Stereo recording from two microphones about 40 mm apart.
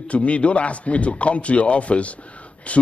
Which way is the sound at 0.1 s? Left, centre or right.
Left.